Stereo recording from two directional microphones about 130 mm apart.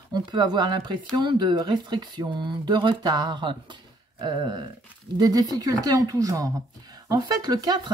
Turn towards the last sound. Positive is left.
turn(degrees=-35)  # may be behind; listen again after turning